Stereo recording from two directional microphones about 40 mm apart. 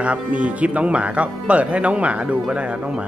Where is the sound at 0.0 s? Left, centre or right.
Right.